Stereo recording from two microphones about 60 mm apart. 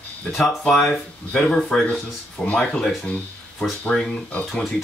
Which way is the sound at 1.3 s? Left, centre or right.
Centre.